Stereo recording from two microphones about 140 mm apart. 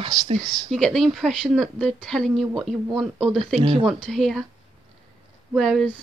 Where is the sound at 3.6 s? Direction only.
45° right (ahead or behind).